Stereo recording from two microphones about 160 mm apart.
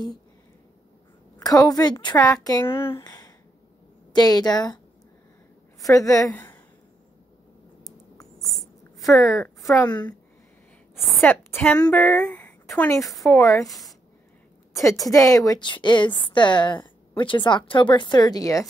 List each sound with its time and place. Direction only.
1.4 s a woman's voice: 25° left (ahead or behind)
5.8 s a woman's voice: 20° left (ahead or behind)
8.4 s a sound: centre (ahead or behind)
9.1 s a woman's voice: 20° left (ahead or behind)
11.1 s a woman's voice: 10° left (ahead or behind)
13.4 s a woman's voice: 20° left (ahead or behind)
14.7 s a sound: 20° left (ahead or behind)
15.0 s a woman's voice: 20° left (ahead or behind)